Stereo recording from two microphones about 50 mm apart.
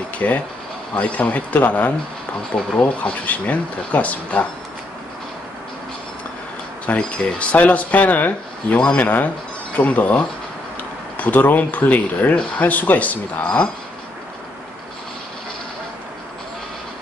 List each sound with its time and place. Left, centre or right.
0.2 s speech: left
6.9 s speech: left
9.0 s speech: left